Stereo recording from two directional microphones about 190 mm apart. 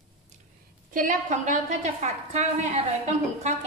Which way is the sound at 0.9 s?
40° right (ahead or behind).